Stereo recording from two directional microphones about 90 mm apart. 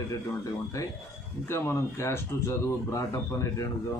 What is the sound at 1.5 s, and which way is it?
A man's voice, 30° left (ahead or behind).